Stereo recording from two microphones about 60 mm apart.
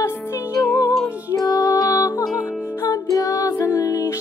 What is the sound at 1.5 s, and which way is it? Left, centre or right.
Music, left.